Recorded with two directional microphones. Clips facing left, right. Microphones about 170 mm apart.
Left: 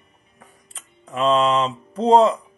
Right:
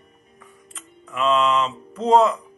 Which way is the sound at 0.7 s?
35° left (ahead or behind).